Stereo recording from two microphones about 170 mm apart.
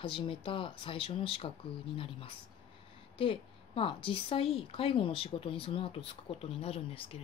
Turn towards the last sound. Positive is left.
turn(degrees=35)  # may be behind; listen again after turning